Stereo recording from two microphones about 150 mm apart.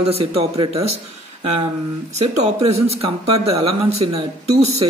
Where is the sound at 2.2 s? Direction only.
45° right (ahead or behind).